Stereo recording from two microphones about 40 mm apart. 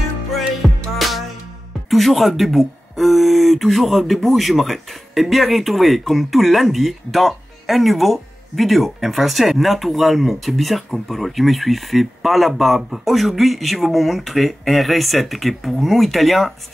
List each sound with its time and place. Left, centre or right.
0.6 s music: centre
1.9 s speech: centre